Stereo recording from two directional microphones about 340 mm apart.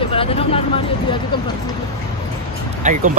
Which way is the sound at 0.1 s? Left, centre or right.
Centre.